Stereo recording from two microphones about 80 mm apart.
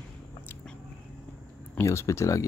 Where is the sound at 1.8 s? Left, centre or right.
Left.